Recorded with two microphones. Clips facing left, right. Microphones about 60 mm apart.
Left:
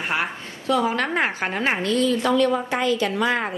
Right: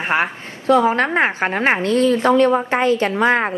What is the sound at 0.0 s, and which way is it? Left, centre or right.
A woman's voice, right.